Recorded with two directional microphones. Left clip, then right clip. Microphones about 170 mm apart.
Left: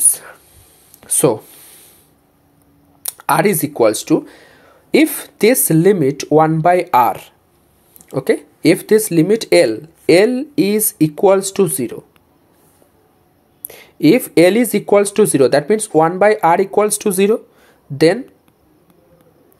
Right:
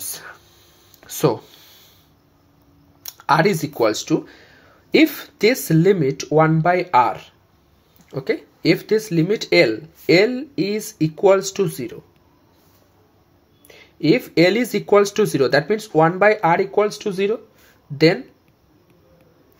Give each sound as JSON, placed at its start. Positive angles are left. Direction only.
{"t": 0.0, "sound": "a sound", "side_deg": 30}
{"t": 3.0, "sound": "speech", "side_deg": 40}
{"t": 13.7, "sound": "speech", "side_deg": 50}
{"t": 17.9, "sound": "speech", "side_deg": 35}